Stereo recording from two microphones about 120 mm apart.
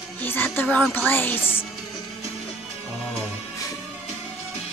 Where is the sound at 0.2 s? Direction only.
15° left (ahead or behind).